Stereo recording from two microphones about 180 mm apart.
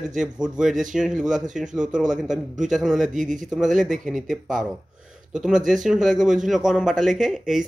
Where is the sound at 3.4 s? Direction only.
Centre (ahead or behind).